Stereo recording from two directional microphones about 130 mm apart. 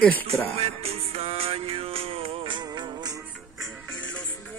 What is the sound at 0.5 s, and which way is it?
Music, 50° right (ahead or behind).